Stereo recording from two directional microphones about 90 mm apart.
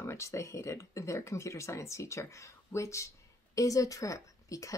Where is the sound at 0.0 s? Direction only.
30° left (ahead or behind).